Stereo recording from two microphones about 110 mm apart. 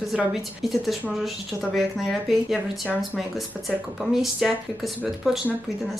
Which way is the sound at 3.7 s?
5° right (ahead or behind).